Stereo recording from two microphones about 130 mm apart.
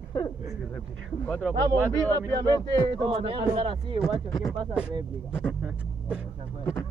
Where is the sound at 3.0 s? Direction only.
40° right (ahead or behind).